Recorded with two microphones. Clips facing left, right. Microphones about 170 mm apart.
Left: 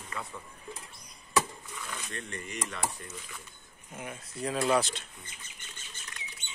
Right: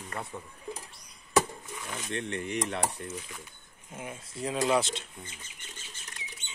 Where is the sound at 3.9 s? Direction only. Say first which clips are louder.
Right 1 dB; 25° right (ahead or behind).